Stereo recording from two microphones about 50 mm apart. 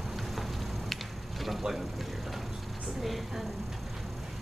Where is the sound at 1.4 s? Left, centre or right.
Centre.